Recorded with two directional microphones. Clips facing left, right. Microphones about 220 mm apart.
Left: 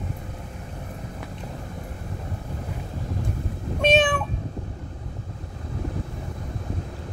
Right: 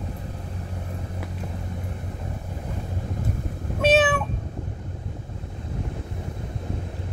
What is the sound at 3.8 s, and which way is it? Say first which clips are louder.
Meow: right 1 dB; 5° right (ahead or behind).